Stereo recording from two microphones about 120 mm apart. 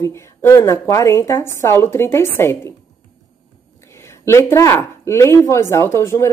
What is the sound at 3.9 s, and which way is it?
Speech, 25° left (ahead or behind).